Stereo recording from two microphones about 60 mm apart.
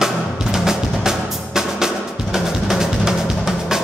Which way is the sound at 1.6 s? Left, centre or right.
Centre.